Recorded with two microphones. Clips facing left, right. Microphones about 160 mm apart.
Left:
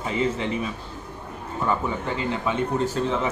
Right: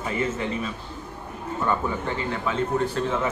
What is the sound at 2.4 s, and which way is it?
Speech, 20° left (ahead or behind).